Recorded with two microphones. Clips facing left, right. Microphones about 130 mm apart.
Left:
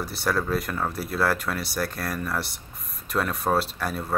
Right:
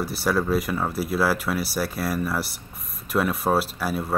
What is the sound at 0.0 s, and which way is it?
Speech, 5° right (ahead or behind).